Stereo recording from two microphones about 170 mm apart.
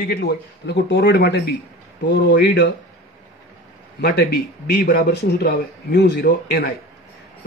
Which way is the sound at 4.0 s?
70° left (ahead or behind).